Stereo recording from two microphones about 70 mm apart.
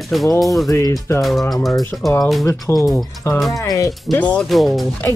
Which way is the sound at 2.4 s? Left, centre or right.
Left.